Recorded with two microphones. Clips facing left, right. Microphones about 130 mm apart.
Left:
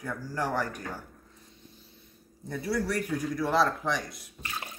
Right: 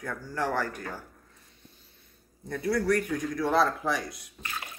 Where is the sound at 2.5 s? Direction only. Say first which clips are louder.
Right 4 dB; 5° left (ahead or behind).